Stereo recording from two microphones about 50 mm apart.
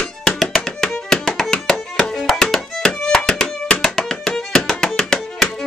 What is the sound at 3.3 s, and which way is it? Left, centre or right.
Music, centre.